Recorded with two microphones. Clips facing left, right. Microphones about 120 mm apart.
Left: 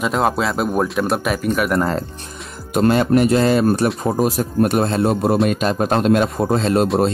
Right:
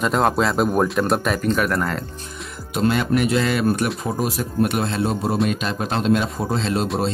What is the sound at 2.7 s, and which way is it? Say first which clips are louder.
A man's voice: left 5 dB; 45° left (ahead or behind).